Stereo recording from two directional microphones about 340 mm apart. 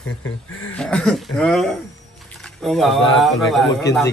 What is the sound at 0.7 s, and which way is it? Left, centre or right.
A man's voice, centre.